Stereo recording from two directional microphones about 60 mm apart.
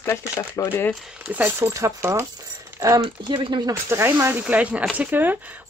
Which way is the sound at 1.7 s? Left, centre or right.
Right.